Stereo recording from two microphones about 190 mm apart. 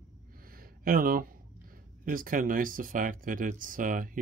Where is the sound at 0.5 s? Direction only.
50° right (ahead or behind).